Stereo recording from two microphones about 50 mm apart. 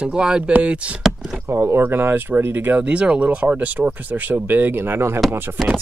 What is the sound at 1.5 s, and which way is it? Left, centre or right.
Speech, right.